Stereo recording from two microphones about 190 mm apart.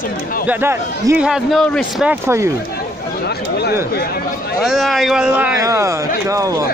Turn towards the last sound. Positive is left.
turn(degrees=-15)  # may be behind; listen again after turning